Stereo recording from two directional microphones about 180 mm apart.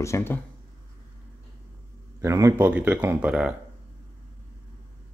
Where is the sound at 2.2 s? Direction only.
15° right (ahead or behind).